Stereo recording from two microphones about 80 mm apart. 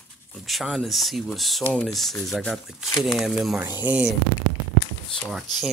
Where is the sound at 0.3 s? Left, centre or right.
Centre.